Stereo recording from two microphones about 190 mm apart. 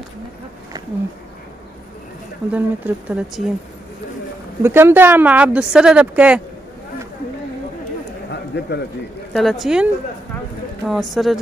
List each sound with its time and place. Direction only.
2.5 s speech: 5° right (ahead or behind)
4.6 s speech: 10° right (ahead or behind)
8.3 s a sound: 60° left (ahead or behind)
9.3 s speech: centre (ahead or behind)
10.9 s speech: centre (ahead or behind)